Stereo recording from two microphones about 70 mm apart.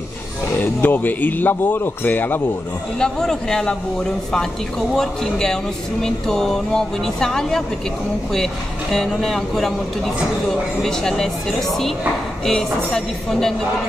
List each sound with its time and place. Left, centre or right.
0.6 s speech: left
3.0 s speech: centre
8.9 s a woman's voice: centre
10.8 s speech: centre
12.4 s a woman's voice: centre